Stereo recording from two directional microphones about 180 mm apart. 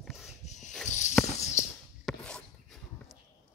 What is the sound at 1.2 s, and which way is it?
Walk, 5° left (ahead or behind).